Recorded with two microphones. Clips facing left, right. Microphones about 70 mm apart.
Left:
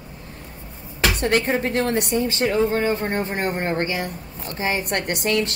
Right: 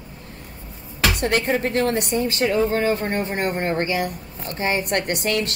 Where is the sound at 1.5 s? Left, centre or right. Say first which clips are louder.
Right 1 dB; left.